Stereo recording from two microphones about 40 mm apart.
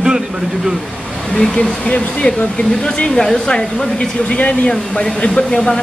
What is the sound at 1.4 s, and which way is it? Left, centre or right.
Speech, centre.